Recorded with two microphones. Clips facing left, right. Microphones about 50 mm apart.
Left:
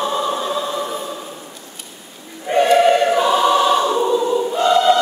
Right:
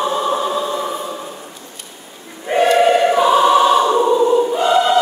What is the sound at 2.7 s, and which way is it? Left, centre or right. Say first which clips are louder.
Choir: even; centre.